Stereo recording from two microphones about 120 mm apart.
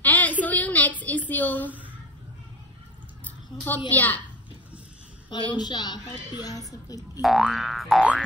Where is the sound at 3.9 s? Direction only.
15° left (ahead or behind).